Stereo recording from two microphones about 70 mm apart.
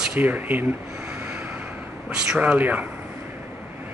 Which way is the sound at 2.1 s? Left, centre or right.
Centre.